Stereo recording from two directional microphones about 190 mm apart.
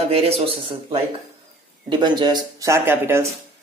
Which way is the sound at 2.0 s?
25° right (ahead or behind).